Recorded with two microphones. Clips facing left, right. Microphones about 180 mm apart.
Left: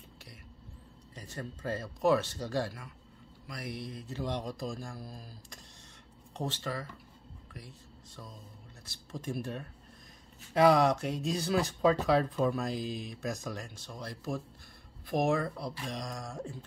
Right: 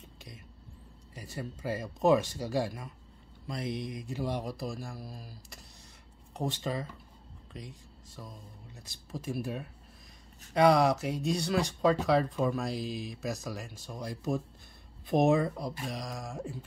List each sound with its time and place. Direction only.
1.1 s speech: 10° right (ahead or behind)
9.1 s speech: 5° right (ahead or behind)
15.8 s speech: 5° right (ahead or behind)